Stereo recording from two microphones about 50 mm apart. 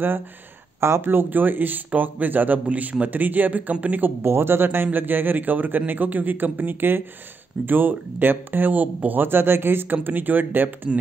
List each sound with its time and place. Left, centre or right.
0.7 s speech: right
1.1 s a man's voice: right
4.2 s speech: right
4.6 s a man's voice: right